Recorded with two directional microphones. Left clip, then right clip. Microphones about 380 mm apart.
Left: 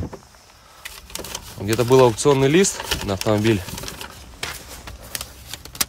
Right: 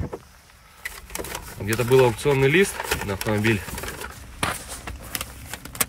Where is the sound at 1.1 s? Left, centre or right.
Centre.